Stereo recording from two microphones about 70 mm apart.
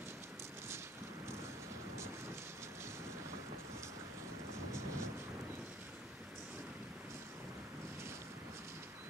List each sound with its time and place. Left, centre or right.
4.7 s vehicle: right